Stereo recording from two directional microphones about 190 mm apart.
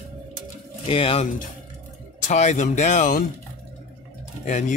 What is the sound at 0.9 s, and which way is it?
Speech, 30° left (ahead or behind).